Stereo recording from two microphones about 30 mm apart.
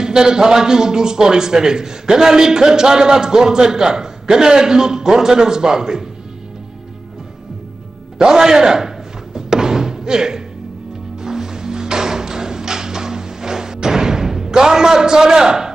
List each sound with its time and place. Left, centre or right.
0.0 s a man's voice: right
8.2 s slam: right
11.2 s music: centre